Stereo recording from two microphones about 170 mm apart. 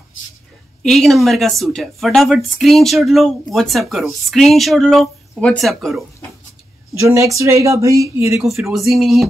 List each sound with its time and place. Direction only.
0.8 s speech: centre (ahead or behind)
7.0 s speech: 20° right (ahead or behind)
8.4 s speech: centre (ahead or behind)